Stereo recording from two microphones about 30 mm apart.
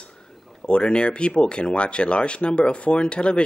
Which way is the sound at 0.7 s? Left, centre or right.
Left.